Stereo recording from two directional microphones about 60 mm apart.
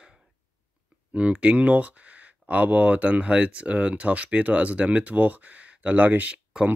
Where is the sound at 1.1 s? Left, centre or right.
Centre.